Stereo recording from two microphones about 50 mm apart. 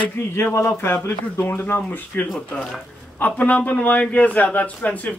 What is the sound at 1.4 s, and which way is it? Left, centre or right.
A man's voice, left.